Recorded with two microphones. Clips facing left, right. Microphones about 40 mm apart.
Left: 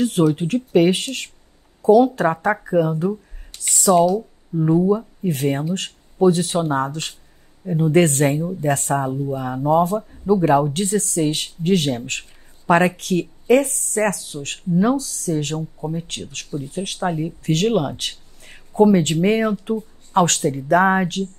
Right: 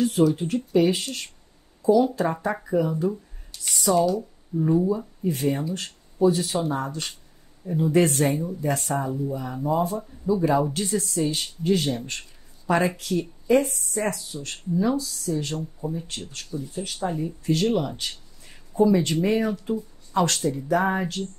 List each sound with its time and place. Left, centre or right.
0.0 s speech: left
2.5 s speech: left
4.6 s speech: left
4.8 s speech: left
5.3 s speech: left
7.6 s speech: left
16.1 s speech: left
16.4 s speech: left